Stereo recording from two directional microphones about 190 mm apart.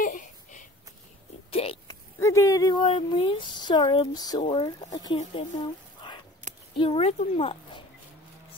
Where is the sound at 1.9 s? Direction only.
15° left (ahead or behind).